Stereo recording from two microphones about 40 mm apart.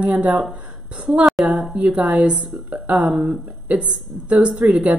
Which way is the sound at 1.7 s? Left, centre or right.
Right.